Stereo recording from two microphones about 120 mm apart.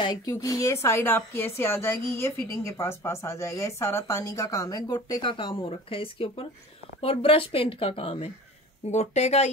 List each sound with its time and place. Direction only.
0.0 s speech: 30° left (ahead or behind)
5.2 s speech: 45° left (ahead or behind)
8.9 s speech: 65° left (ahead or behind)